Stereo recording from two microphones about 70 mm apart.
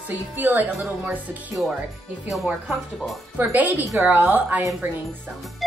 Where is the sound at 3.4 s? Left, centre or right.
Right.